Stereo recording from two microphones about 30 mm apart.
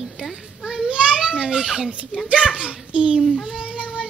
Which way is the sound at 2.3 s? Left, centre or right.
Right.